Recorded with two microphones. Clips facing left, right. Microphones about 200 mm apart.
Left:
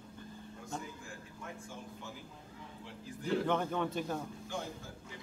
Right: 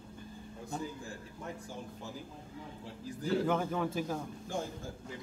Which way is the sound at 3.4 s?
5° right (ahead or behind).